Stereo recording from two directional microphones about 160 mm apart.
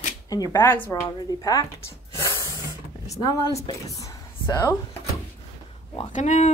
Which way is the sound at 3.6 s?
20° left (ahead or behind).